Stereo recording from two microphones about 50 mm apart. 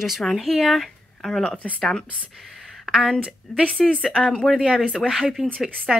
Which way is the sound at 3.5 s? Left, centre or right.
Centre.